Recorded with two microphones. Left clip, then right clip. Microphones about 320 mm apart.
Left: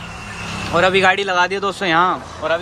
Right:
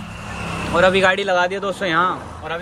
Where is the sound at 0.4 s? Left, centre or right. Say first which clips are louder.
Right 1 dB; centre.